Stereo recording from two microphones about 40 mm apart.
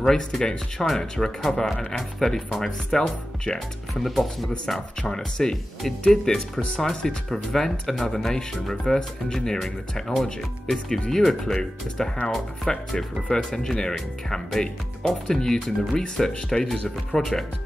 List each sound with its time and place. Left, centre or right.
0.0 s speech: centre
3.5 s speech: centre
10.2 s speech: centre